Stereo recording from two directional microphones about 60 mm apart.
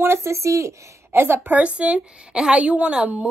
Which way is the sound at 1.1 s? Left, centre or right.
Right.